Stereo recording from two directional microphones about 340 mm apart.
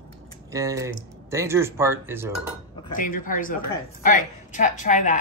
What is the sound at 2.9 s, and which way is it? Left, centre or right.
A woman's voice, left.